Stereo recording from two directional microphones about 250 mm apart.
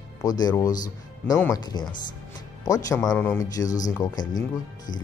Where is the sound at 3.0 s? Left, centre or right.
Centre.